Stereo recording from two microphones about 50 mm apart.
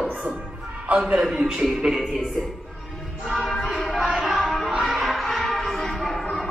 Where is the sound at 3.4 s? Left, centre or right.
Centre.